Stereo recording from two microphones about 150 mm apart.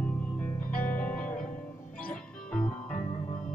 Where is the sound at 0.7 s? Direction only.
65° left (ahead or behind).